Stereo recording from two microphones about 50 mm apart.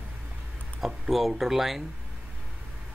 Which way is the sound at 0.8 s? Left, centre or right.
Centre.